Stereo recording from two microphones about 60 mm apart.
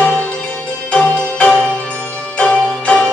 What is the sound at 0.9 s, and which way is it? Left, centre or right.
Music, centre.